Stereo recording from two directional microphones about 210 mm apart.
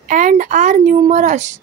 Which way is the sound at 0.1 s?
40° right (ahead or behind).